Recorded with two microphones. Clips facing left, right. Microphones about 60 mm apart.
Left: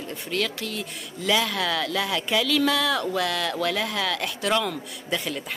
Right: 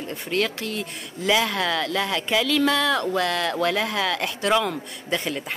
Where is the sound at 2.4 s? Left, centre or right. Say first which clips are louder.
Right 2 dB; centre.